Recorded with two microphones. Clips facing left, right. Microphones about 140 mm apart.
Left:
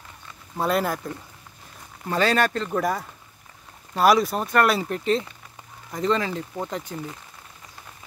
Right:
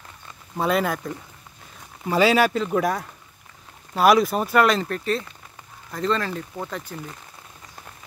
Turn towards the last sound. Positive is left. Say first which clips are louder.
# left 2 dB
turn(degrees=15)  # may be behind; listen again after turning